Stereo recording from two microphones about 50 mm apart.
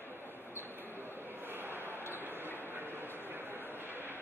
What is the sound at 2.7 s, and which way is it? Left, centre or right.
Vehicle, right.